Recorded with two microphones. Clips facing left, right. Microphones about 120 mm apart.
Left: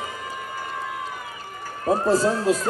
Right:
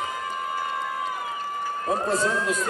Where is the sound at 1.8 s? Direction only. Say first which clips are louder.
Left 6 dB; 35° left (ahead or behind).